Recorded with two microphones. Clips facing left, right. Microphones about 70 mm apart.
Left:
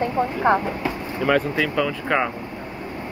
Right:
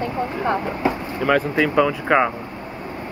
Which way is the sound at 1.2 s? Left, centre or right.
Centre.